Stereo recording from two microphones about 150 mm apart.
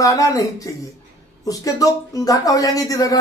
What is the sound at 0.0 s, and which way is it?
Speech, 20° left (ahead or behind).